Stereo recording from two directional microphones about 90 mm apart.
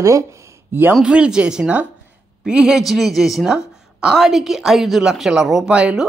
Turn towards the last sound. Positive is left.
turn(degrees=-15)  # may be behind; listen again after turning